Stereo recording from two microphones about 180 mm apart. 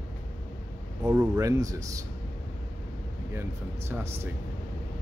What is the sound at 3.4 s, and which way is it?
Speech, 15° right (ahead or behind).